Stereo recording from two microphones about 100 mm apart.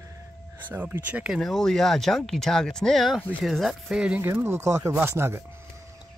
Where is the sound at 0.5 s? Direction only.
20° right (ahead or behind).